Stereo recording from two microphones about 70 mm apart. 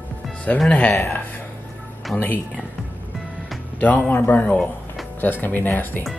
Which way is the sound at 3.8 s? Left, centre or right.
Left.